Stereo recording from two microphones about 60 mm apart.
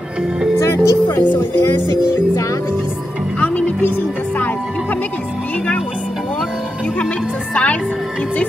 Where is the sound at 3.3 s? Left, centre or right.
Left.